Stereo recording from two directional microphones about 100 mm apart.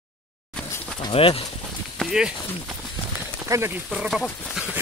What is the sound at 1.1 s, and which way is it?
Speech, 70° left (ahead or behind).